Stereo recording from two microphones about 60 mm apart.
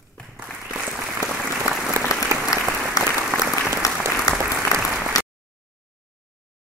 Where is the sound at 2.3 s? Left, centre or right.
Right.